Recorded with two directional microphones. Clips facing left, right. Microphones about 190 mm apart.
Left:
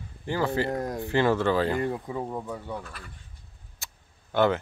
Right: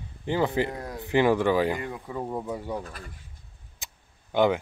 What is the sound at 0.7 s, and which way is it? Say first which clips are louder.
Speech: left 6 dB; 45° left (ahead or behind).